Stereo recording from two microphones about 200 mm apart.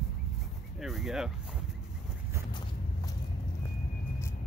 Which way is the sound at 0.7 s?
Centre (ahead or behind).